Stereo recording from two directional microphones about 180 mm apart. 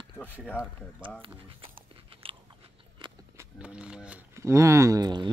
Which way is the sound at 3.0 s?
25° right (ahead or behind).